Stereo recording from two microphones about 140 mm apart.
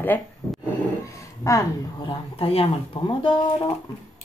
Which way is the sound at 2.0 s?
40° left (ahead or behind).